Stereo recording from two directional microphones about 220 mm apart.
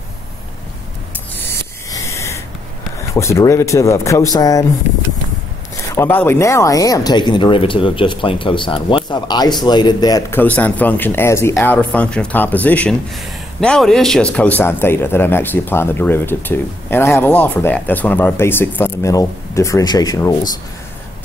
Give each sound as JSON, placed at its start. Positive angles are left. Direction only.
{"t": 1.3, "sound": "a sound", "side_deg": 10}
{"t": 3.2, "sound": "speech", "side_deg": 15}
{"t": 5.9, "sound": "speech", "side_deg": 10}